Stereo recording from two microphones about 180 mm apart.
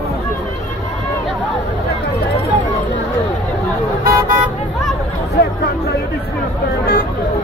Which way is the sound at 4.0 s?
55° right (ahead or behind).